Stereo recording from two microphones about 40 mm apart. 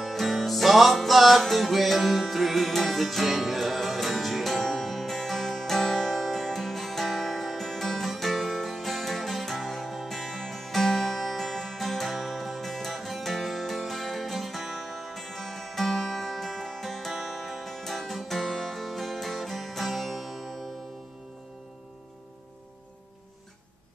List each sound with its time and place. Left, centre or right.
0.0 s music: centre